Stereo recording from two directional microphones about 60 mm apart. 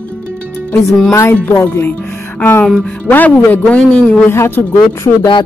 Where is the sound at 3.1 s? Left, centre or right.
Left.